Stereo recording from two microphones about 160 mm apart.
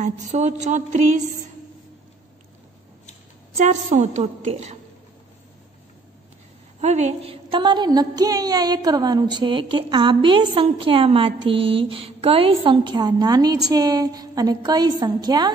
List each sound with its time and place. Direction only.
0.3 s a woman's voice: 45° right (ahead or behind)
3.5 s a woman's voice: 45° right (ahead or behind)
6.8 s a woman's voice: 45° right (ahead or behind); by 15.5 s 25° right (ahead or behind)